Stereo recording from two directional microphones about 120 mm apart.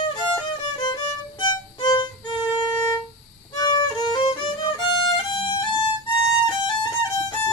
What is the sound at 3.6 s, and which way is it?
Violin, 40° left (ahead or behind).